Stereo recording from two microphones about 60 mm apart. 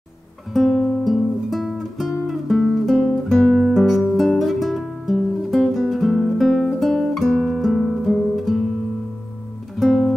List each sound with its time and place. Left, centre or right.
0.5 s guitar: centre
3.4 s music: centre
3.7 s music: centre
6.8 s guitar: centre
7.4 s music: centre
9.8 s music: centre